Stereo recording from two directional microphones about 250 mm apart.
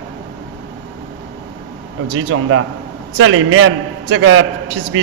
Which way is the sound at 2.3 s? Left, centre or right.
Right.